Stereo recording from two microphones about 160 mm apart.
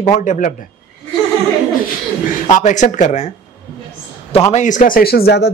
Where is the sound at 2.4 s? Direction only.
50° left (ahead or behind).